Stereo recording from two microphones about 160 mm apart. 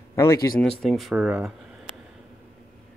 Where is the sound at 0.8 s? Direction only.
Centre (ahead or behind).